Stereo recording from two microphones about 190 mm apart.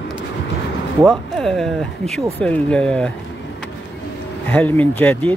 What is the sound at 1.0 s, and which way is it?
Speech, centre (ahead or behind).